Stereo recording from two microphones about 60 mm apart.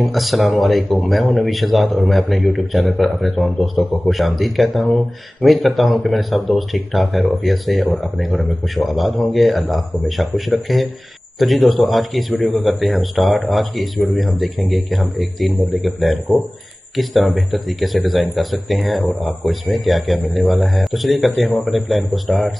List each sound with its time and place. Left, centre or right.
0.0 s speech: centre